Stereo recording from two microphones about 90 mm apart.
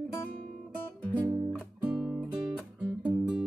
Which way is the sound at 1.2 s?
35° right (ahead or behind).